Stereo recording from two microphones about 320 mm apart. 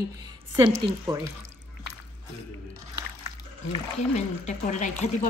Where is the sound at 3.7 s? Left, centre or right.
Left.